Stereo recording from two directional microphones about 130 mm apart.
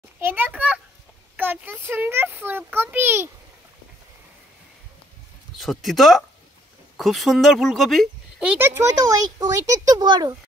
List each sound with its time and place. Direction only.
0.2 s a child's voice: 15° right (ahead or behind)
5.6 s speech: centre (ahead or behind); by 10.3 s 30° right (ahead or behind)